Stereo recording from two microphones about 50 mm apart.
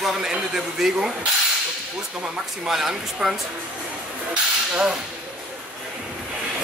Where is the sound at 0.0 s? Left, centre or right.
Centre.